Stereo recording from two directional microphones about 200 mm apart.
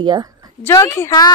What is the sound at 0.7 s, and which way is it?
Speech, 15° left (ahead or behind).